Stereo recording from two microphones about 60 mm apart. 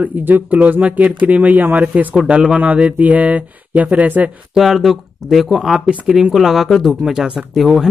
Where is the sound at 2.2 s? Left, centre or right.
Centre.